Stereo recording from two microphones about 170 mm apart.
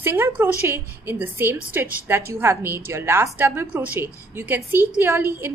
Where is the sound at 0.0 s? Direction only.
15° right (ahead or behind).